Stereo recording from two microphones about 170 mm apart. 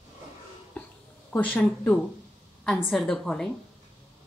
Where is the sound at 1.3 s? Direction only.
10° left (ahead or behind).